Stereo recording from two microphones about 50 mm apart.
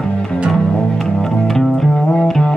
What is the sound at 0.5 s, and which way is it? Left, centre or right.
Music, centre.